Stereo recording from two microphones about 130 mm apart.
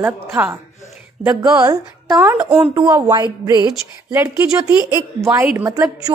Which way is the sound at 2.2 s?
15° right (ahead or behind).